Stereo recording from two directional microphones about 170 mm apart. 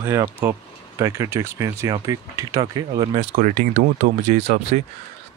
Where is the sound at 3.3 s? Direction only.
55° right (ahead or behind).